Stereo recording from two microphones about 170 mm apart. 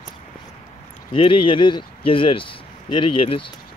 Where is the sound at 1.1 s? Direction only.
30° left (ahead or behind).